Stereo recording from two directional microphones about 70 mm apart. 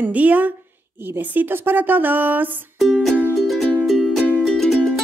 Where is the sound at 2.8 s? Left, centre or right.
Centre.